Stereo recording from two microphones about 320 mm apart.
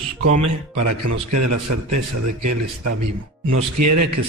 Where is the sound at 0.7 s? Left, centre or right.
Right.